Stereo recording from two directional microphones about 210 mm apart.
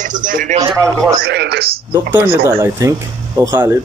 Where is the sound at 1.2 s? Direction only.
50° right (ahead or behind).